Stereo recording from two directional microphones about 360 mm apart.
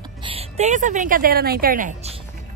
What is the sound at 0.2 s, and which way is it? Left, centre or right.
Speech, centre.